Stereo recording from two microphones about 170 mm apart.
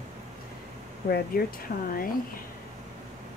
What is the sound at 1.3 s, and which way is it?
Speech, 60° left (ahead or behind).